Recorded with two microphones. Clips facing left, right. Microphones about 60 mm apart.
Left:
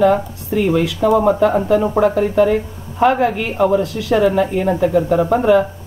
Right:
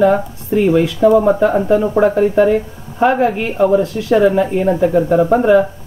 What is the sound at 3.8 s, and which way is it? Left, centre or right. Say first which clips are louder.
Speech: right 3 dB; right.